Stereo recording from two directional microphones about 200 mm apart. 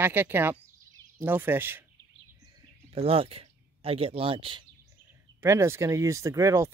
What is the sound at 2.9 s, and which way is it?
Speech, 30° right (ahead or behind).